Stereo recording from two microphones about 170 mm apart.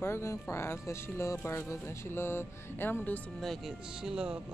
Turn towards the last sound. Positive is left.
turn(degrees=-5)  # may be behind; listen again after turning